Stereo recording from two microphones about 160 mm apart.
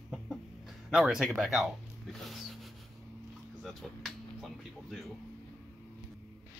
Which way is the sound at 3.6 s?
Centre (ahead or behind).